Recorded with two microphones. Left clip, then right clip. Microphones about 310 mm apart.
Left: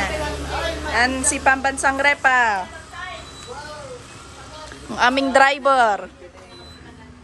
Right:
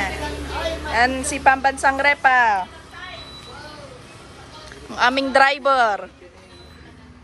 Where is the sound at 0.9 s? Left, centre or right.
Centre.